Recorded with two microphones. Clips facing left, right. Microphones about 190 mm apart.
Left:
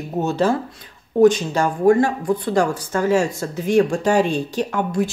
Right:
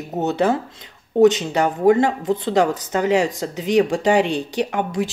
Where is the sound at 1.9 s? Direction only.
20° right (ahead or behind).